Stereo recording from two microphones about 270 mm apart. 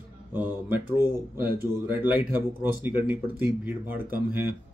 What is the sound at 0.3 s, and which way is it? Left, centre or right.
Speech, centre.